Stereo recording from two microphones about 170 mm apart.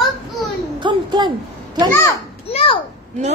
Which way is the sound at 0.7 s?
25° right (ahead or behind).